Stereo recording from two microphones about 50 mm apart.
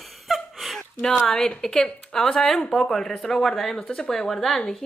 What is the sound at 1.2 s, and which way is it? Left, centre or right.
A woman's voice, centre.